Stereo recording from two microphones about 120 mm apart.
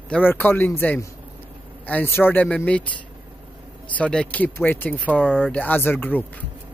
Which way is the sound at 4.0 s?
10° left (ahead or behind).